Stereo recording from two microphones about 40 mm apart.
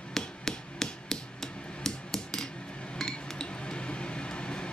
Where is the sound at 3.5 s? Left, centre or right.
Left.